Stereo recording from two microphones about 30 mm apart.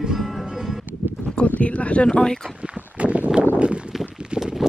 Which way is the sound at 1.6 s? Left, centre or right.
Left.